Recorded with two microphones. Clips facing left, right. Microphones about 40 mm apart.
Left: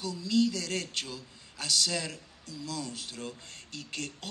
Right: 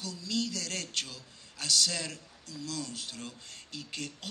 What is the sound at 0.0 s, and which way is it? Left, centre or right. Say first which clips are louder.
Speech: left 7 dB; centre.